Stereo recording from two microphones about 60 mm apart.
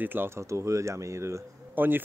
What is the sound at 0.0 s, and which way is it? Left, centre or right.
Speech, right.